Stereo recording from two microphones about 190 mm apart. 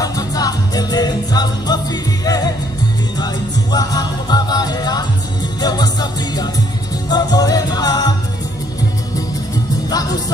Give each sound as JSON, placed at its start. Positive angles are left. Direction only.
{"t": 0.0, "sound": "music", "side_deg": 20}
{"t": 3.7, "sound": "music", "side_deg": 20}